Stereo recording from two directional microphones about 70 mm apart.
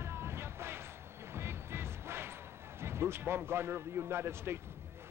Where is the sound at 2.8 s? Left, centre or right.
Right.